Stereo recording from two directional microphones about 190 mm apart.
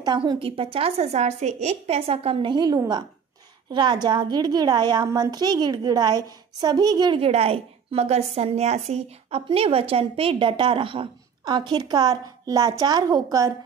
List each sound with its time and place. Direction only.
0.0 s a woman's voice: 25° right (ahead or behind)